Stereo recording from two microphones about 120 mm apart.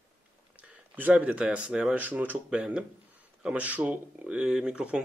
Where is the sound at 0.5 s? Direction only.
10° right (ahead or behind).